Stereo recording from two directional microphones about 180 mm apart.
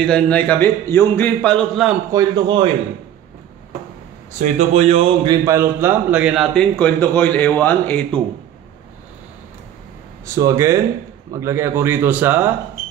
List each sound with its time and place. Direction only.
0.0 s a man's voice: 5° left (ahead or behind)
2.1 s a man's voice: 25° right (ahead or behind)
4.4 s a man's voice: 40° right (ahead or behind); by 8.2 s 10° left (ahead or behind)
10.2 s a man's voice: 15° right (ahead or behind)